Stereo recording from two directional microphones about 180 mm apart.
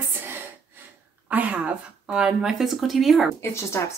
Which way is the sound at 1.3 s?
10° right (ahead or behind).